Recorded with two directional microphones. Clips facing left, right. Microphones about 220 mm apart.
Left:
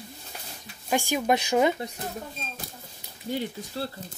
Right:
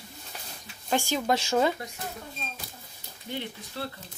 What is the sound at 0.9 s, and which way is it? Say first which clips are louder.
Speech: left 2 dB; 15° left (ahead or behind).